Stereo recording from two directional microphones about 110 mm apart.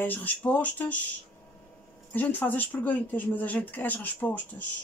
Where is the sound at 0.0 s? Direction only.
15° left (ahead or behind).